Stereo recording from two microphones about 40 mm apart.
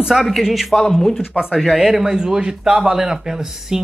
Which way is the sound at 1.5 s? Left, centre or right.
Centre.